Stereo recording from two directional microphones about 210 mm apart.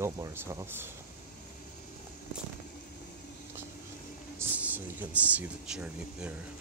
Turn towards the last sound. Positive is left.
turn(degrees=-5)  # may be behind; listen again after turning